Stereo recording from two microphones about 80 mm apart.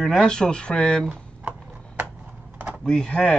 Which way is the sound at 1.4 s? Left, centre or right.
Right.